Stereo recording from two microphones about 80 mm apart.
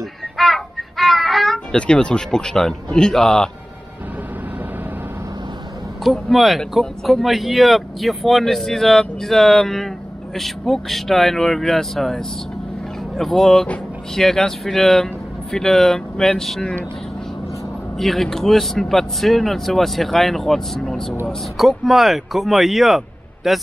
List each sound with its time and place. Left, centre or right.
0.4 s child singing: centre
1.8 s a man's voice: centre
6.0 s a man's voice: centre
17.9 s speech: centre